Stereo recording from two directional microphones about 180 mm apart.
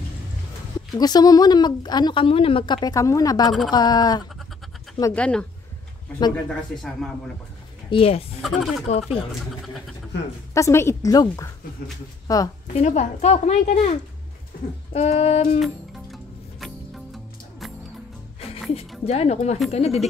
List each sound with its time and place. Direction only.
0.9 s speech: 20° left (ahead or behind)
5.1 s a woman's voice: 5° left (ahead or behind)
7.9 s a woman's voice: 35° left (ahead or behind)
8.4 s speech: centre (ahead or behind)
8.8 s a woman's voice: 35° left (ahead or behind)
10.5 s a woman's voice: 15° left (ahead or behind)
12.7 s a woman's voice: 40° left (ahead or behind)
15.6 s music: centre (ahead or behind)
18.4 s music: 35° left (ahead or behind)
19.0 s a woman's voice: 35° left (ahead or behind)